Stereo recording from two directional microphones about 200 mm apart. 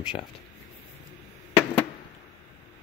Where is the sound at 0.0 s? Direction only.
25° left (ahead or behind).